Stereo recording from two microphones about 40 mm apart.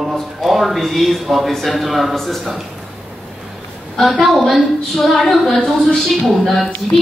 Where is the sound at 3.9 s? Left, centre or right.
Centre.